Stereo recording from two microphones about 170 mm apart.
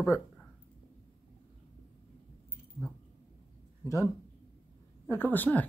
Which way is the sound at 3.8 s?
20° left (ahead or behind).